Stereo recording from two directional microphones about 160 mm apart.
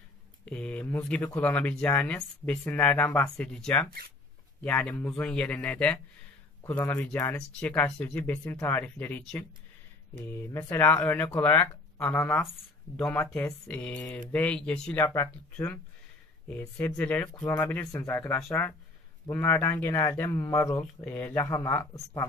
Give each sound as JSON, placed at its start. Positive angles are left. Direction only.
{"t": 0.5, "sound": "speech", "side_deg": 10}
{"t": 10.5, "sound": "speech", "side_deg": 15}